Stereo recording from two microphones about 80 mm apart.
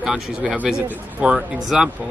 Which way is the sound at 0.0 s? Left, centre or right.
Centre.